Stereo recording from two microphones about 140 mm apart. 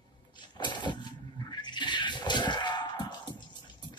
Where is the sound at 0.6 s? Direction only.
35° left (ahead or behind).